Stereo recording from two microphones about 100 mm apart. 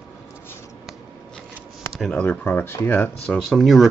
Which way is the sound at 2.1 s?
10° left (ahead or behind).